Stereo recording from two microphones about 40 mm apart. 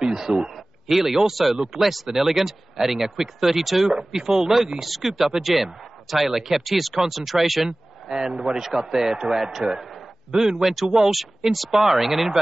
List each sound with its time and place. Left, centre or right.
0.0 s a sound: centre
0.8 s speech: centre
8.1 s a man's voice: centre
8.5 s speech: centre